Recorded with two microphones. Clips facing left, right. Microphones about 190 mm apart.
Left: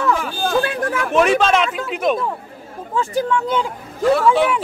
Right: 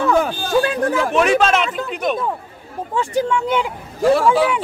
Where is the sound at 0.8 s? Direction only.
35° right (ahead or behind).